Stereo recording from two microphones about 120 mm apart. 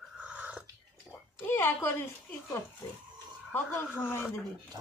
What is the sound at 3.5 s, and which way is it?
Speech, 20° left (ahead or behind).